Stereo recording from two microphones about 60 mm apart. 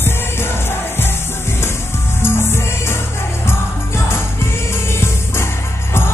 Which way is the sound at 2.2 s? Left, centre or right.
Left.